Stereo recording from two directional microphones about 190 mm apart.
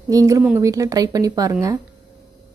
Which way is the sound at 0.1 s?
15° right (ahead or behind).